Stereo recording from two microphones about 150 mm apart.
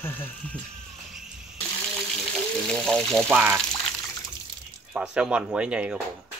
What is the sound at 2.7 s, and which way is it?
Speech, 5° left (ahead or behind).